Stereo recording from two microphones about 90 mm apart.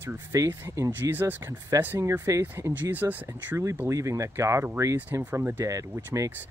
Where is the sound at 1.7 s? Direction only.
40° right (ahead or behind); by 3.5 s 20° right (ahead or behind).